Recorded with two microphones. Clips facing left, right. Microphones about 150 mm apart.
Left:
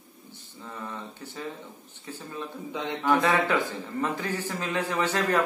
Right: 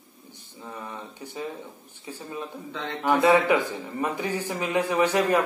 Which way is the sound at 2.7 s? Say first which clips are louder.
Left 3 dB; 15° left (ahead or behind).